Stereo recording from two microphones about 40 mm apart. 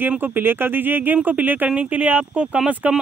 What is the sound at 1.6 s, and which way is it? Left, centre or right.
Speech, right.